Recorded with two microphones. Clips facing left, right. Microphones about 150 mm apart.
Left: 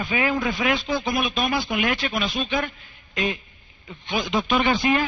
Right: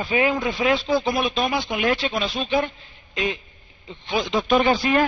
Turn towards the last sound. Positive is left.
turn(degrees=-35)  # may be behind; listen again after turning